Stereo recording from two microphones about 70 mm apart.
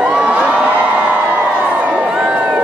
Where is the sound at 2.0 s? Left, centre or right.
Centre.